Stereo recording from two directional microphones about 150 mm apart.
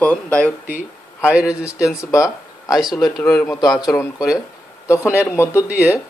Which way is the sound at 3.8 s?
25° left (ahead or behind).